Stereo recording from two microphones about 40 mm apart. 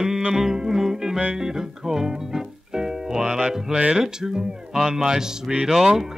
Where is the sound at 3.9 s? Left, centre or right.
Centre.